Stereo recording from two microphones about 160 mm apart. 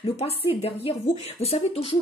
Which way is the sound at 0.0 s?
35° left (ahead or behind).